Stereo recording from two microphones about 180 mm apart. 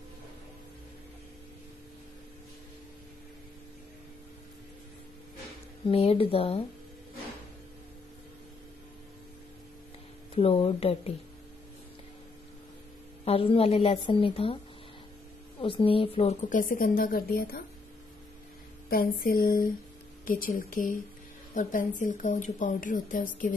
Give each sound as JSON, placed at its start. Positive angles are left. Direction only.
{"t": 5.9, "sound": "a woman's voice", "side_deg": 30}
{"t": 10.3, "sound": "a woman's voice", "side_deg": 30}
{"t": 13.2, "sound": "a woman's voice", "side_deg": 30}
{"t": 15.6, "sound": "a woman's voice", "side_deg": 30}
{"t": 18.9, "sound": "a woman's voice", "side_deg": 55}